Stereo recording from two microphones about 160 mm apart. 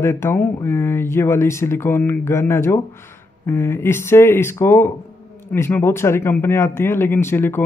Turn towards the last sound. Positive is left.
turn(degrees=15)  # may be behind; listen again after turning